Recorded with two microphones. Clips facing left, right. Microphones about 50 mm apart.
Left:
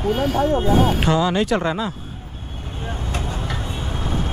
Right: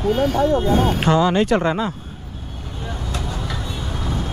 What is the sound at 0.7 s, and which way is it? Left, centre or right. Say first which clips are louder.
Speech: even; right.